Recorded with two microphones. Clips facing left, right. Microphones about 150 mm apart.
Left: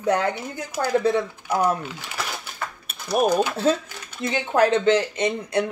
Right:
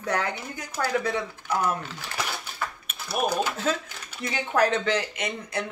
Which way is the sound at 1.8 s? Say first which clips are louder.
Left 2 dB; 10° left (ahead or behind).